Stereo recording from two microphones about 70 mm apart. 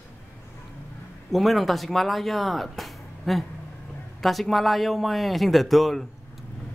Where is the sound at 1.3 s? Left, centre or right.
Centre.